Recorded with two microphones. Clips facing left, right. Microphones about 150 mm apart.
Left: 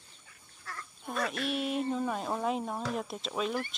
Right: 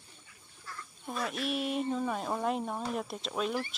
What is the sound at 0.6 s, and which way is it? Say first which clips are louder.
Quack: left 2 dB; 70° left (ahead or behind).